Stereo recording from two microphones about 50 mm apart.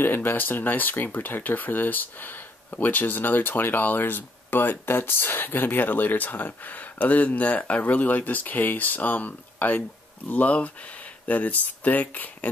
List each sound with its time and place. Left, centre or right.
0.0 s speech: left